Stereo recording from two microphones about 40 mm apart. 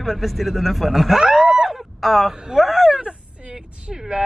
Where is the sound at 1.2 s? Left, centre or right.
Centre.